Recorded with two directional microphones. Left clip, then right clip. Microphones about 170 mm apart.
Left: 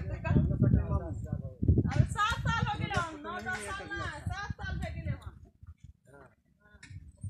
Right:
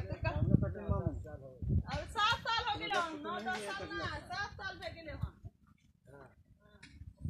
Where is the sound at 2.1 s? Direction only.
5° left (ahead or behind).